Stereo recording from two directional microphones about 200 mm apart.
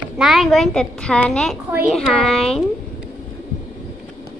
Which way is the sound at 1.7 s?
10° right (ahead or behind).